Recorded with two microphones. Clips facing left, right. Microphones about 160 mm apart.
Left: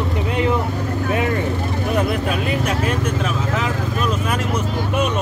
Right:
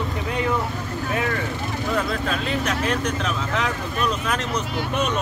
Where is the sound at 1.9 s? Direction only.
15° left (ahead or behind).